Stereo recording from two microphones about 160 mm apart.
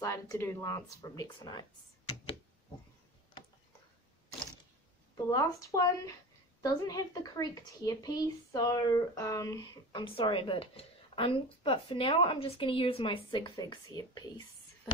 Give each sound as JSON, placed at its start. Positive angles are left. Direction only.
{"t": 0.0, "sound": "speech", "side_deg": 20}
{"t": 5.1, "sound": "speech", "side_deg": 20}